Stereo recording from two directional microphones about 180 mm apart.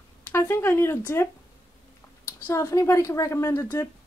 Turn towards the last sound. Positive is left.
turn(degrees=15)  # may be behind; listen again after turning